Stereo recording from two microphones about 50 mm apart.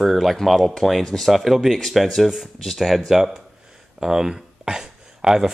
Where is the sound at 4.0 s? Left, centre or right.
Centre.